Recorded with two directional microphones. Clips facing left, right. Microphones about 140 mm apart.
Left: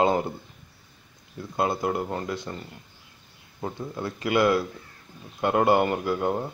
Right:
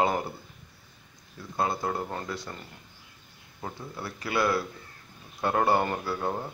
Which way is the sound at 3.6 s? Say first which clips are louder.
Left 6 dB; 20° left (ahead or behind).